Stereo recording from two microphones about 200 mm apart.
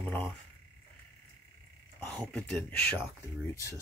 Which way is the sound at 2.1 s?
5° left (ahead or behind).